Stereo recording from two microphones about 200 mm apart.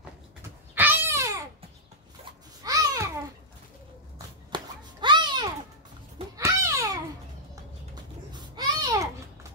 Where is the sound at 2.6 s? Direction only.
15° right (ahead or behind).